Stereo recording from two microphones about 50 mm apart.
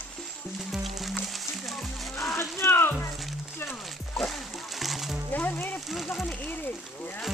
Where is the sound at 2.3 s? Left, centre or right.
Left.